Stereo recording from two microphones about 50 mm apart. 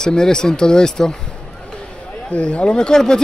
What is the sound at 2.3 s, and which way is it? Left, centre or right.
Speech, left.